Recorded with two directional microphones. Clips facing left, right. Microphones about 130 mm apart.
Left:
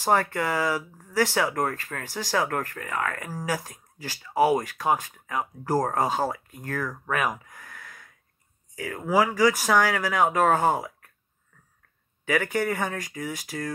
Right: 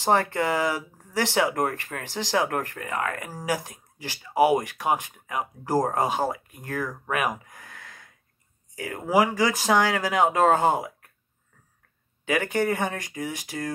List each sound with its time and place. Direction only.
0.0 s speech: 25° right (ahead or behind)
12.3 s speech: 20° right (ahead or behind)